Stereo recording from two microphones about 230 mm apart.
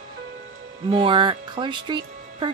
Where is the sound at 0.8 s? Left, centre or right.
Right.